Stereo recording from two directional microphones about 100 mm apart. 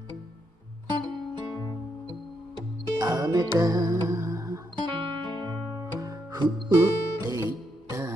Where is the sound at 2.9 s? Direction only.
35° right (ahead or behind).